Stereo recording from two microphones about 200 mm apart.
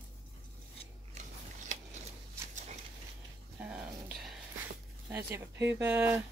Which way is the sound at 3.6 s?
5° right (ahead or behind).